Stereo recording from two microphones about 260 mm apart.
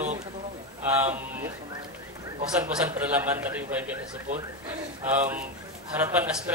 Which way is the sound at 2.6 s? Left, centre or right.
Centre.